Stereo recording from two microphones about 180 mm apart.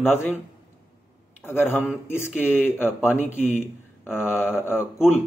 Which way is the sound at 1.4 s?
10° left (ahead or behind).